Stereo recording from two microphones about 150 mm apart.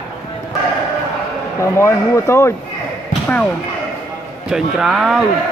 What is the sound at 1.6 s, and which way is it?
Speech, 20° left (ahead or behind).